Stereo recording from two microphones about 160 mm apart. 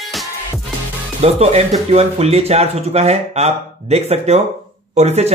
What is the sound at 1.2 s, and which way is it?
Speech, 40° right (ahead or behind).